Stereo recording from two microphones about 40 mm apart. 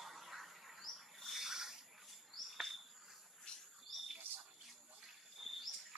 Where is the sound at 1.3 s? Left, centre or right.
Centre.